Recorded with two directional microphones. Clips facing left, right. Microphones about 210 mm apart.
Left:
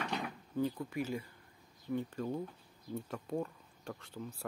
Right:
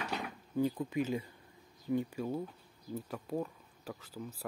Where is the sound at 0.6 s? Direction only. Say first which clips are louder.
Right 3 dB; 20° right (ahead or behind).